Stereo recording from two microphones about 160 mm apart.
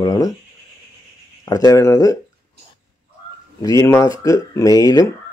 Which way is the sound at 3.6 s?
20° left (ahead or behind).